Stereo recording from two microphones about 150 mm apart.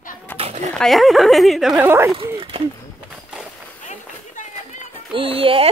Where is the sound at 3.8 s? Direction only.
55° left (ahead or behind).